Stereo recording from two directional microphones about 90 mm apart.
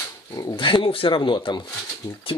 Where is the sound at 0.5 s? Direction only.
70° left (ahead or behind).